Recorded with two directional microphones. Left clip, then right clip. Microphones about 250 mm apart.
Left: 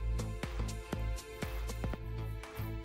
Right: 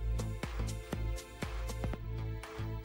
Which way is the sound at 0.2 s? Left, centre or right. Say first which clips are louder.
Even; centre.